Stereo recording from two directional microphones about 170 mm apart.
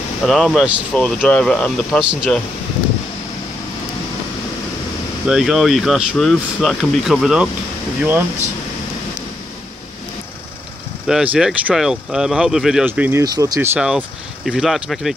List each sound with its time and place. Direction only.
0.2 s speech: centre (ahead or behind)
5.2 s speech: 5° right (ahead or behind)
11.1 s speech: 5° right (ahead or behind)
13.2 s speech: 20° right (ahead or behind)
13.7 s speech: 5° right (ahead or behind)